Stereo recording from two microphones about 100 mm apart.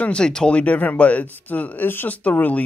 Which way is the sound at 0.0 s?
10° left (ahead or behind).